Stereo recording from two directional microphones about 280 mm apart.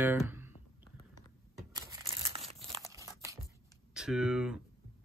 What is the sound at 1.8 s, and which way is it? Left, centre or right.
Crumpling, centre.